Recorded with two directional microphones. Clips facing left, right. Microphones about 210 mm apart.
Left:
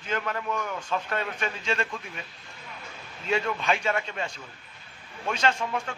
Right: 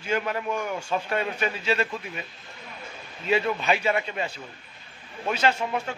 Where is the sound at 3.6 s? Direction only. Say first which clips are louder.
Right 3 dB; 5° right (ahead or behind).